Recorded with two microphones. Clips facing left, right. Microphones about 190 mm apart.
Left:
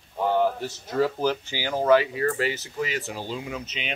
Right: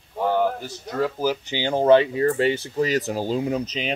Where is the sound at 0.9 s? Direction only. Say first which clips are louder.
Even; centre (ahead or behind).